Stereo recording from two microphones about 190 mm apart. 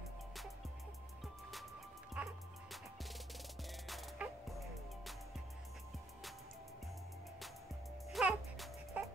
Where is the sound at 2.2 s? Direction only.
5° right (ahead or behind).